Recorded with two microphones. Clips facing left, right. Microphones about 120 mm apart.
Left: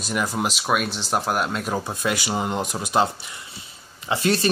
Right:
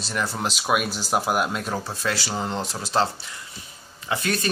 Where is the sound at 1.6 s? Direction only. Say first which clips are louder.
Left 2 dB; 15° left (ahead or behind).